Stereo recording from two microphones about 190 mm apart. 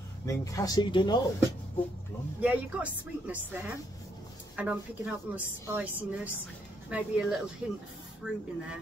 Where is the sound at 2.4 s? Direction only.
5° right (ahead or behind).